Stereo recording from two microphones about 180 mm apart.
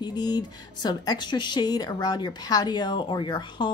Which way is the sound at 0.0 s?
25° left (ahead or behind).